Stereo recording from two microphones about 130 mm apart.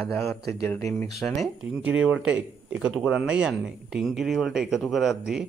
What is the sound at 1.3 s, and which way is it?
Speech, 5° right (ahead or behind).